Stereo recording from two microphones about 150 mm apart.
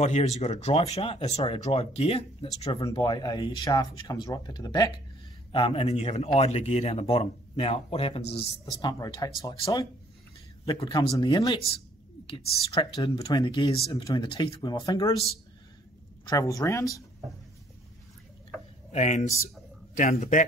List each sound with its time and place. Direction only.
0.0 s speech: 50° left (ahead or behind)
2.9 s speech: 30° left (ahead or behind)
8.8 s speech: 25° left (ahead or behind)
12.9 s speech: 35° left (ahead or behind)
16.3 s speech: 20° left (ahead or behind)
18.9 s speech: 50° left (ahead or behind)
19.4 s speech: 60° left (ahead or behind)